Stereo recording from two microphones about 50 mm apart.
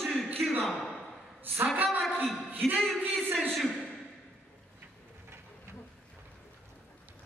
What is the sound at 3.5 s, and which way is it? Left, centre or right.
Speech, centre.